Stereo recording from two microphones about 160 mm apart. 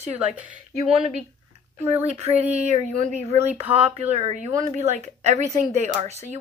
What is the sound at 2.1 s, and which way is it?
Speech, 40° right (ahead or behind).